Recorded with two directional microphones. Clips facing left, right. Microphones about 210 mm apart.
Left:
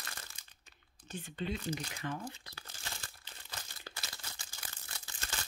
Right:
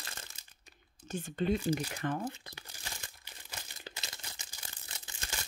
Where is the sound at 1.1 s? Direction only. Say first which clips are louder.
Right 7 dB; 50° right (ahead or behind).